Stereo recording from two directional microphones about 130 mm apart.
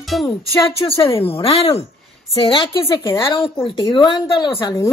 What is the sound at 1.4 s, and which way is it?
Speech, 45° left (ahead or behind).